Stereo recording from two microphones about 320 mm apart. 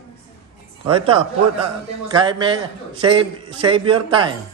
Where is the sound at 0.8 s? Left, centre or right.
Centre.